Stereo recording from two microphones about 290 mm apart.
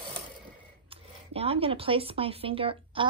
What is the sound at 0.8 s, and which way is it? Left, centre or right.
Speech, centre.